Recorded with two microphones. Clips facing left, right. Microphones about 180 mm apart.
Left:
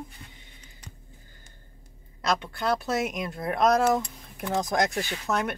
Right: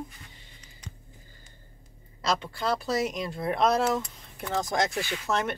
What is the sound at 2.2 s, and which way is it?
Speech, centre (ahead or behind).